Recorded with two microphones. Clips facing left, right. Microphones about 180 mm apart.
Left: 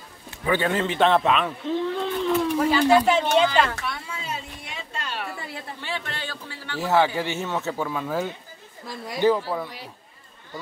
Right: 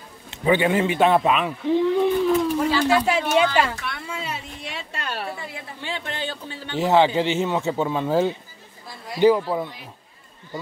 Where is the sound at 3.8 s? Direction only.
70° right (ahead or behind).